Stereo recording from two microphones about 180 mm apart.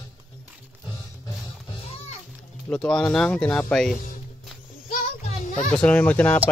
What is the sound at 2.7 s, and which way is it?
Speech, 5° left (ahead or behind).